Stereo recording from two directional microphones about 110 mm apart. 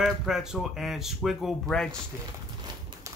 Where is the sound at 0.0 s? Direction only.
5° right (ahead or behind).